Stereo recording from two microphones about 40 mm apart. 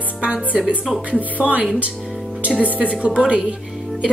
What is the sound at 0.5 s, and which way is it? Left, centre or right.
Speech, centre.